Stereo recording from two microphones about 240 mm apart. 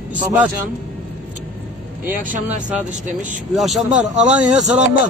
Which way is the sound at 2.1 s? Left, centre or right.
Right.